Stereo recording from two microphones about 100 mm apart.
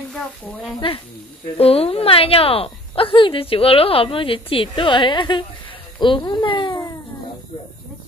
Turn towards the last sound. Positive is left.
turn(degrees=55)  # may be behind; listen again after turning